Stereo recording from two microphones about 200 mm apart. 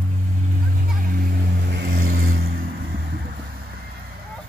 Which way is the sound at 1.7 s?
60° right (ahead or behind).